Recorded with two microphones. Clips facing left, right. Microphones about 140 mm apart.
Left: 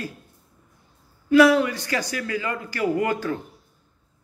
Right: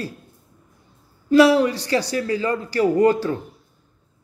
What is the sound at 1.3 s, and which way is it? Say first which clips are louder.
A man's voice: right 2 dB; 35° right (ahead or behind).